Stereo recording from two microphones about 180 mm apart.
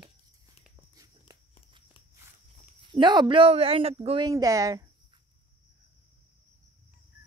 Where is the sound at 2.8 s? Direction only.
25° right (ahead or behind).